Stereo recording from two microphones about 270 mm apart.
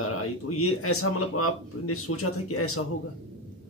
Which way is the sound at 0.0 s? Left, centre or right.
Left.